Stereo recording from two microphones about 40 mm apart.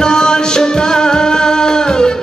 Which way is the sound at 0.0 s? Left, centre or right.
Centre.